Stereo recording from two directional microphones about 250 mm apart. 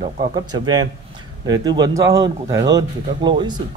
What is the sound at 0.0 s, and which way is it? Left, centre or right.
Speech, centre.